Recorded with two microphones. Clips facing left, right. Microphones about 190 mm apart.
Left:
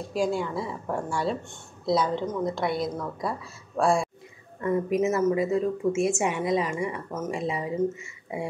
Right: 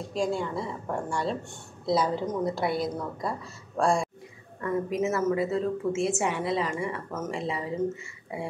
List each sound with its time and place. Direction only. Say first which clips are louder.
0.1 s a woman's voice: left 2 dB; 5° left (ahead or behind)
4.6 s a woman's voice: left 3 dB; 20° left (ahead or behind)